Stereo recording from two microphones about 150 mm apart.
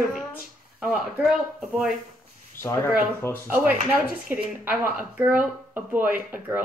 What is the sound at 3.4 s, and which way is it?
A woman's voice, 10° right (ahead or behind).